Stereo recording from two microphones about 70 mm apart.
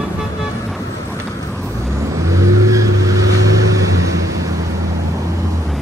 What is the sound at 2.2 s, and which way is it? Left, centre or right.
Vehicle, right.